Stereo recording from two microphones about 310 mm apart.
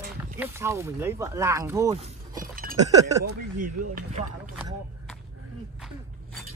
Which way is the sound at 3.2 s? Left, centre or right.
Right.